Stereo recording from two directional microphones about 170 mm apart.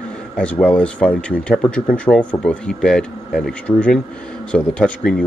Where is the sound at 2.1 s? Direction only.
20° left (ahead or behind).